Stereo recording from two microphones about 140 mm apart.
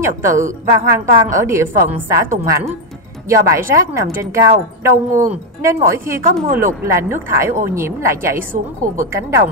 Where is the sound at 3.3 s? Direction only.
20° right (ahead or behind).